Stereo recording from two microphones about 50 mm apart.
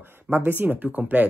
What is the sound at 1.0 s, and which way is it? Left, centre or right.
Speech, right.